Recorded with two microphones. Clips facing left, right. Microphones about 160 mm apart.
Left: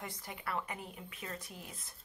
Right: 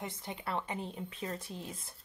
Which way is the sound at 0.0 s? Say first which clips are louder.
Right 3 dB; 25° right (ahead or behind).